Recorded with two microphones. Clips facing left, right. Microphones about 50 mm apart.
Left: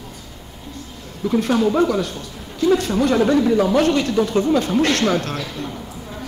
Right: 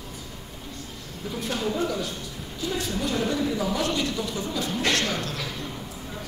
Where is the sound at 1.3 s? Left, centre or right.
Left.